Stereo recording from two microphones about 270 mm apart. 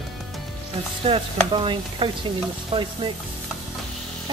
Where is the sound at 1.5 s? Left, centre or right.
Centre.